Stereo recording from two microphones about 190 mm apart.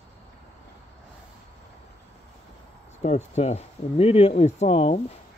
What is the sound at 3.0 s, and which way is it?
Speech, 35° left (ahead or behind).